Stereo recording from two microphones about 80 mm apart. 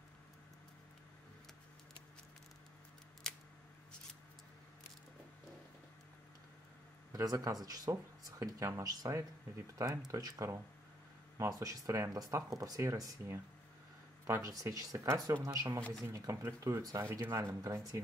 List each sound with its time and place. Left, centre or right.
3.3 s scissors: centre
7.1 s speech: right
17.0 s speech: right